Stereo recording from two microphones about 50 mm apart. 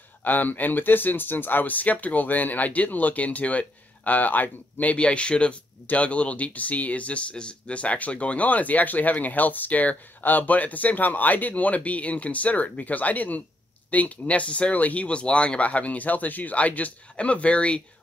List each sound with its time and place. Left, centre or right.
0.2 s speech: left